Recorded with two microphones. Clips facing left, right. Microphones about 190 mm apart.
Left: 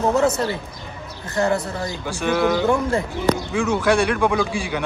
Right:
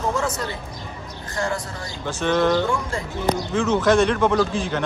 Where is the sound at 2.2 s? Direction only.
10° left (ahead or behind).